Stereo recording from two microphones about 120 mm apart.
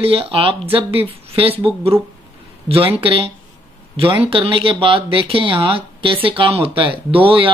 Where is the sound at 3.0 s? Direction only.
50° right (ahead or behind).